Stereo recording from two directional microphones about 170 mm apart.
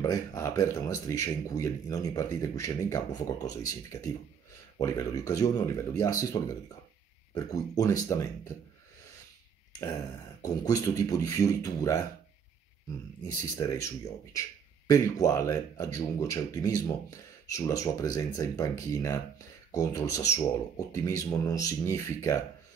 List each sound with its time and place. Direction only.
0.4 s speech: 20° left (ahead or behind)
10.4 s speech: 20° left (ahead or behind)
13.2 s speech: 20° left (ahead or behind)